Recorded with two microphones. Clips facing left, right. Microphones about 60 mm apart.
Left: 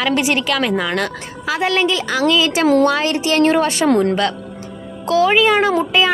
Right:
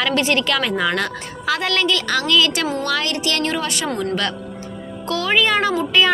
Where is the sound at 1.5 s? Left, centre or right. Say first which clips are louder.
Left 2 dB; centre; by 3.9 s left.